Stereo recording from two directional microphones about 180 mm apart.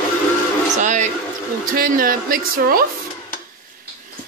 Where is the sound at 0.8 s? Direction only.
45° right (ahead or behind).